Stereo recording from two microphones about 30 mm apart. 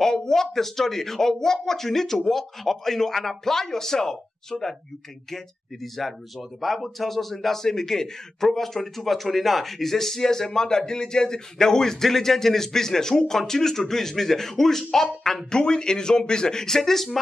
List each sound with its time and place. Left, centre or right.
0.0 s speech: centre
15.5 s speech: left; by 17.2 s centre